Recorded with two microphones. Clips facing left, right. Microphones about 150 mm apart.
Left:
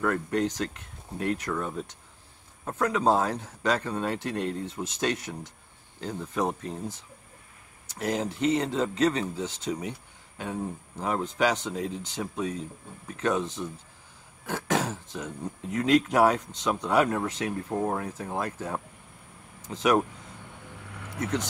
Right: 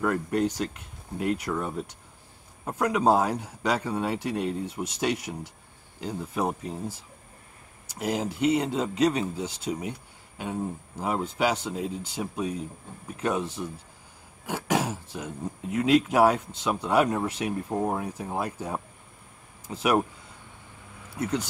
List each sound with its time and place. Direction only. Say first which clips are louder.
0.0 s speech: right 1 dB; 10° right (ahead or behind)
20.9 s vehicle: left 3 dB; 75° left (ahead or behind)
21.2 s speech: right 1 dB; 10° right (ahead or behind)